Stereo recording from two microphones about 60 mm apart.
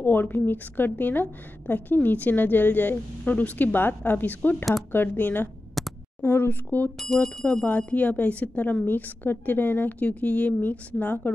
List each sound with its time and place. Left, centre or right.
0.0 s a woman's voice: left
5.8 s a sound: centre
6.2 s a woman's voice: left
7.2 s speech: centre
7.6 s a woman's voice: left